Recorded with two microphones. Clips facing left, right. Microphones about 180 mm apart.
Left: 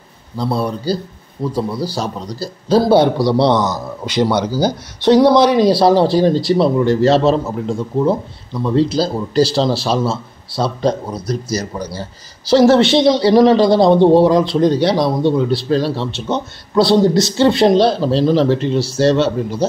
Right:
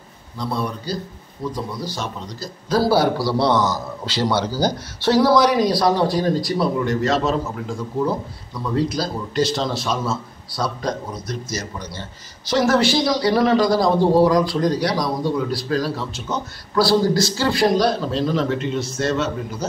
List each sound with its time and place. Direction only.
0.4 s a man's voice: 30° left (ahead or behind)
2.8 s a man's voice: 20° left (ahead or behind)